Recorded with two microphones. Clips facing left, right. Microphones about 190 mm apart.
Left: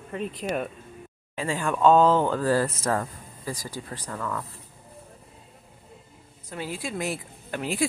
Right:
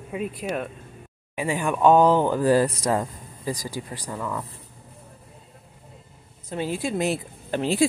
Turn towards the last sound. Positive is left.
turn(degrees=-30)  # may be behind; listen again after turning